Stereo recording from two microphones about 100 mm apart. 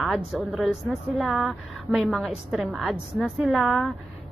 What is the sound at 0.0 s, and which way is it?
A woman's voice, centre (ahead or behind).